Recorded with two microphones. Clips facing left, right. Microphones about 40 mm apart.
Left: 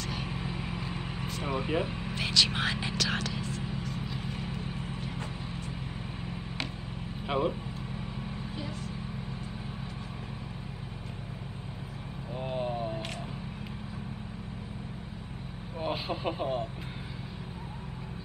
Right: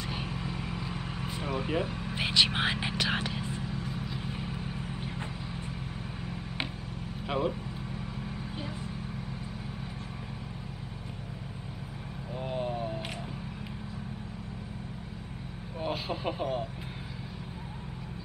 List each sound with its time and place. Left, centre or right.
0.3 s vehicle: centre
1.4 s speech: centre
2.1 s speech: right
4.0 s vehicle: centre
7.2 s speech: centre
12.4 s vehicle: centre
15.8 s speech: centre